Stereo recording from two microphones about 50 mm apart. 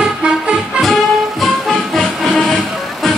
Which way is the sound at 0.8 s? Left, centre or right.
Centre.